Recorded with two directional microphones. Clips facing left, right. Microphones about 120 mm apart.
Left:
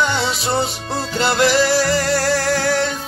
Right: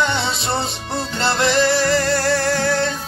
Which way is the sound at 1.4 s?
25° right (ahead or behind).